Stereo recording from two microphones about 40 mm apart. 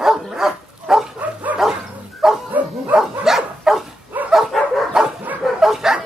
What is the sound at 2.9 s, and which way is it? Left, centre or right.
Dog, centre.